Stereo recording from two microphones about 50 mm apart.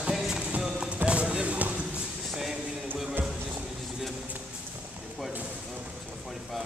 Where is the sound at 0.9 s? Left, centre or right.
Right.